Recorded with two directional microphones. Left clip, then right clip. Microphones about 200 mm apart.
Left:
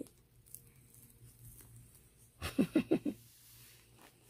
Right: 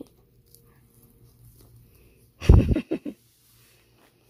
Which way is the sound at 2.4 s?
Centre (ahead or behind).